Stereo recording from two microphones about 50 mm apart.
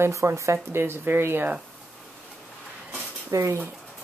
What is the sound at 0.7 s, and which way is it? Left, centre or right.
Speech, right.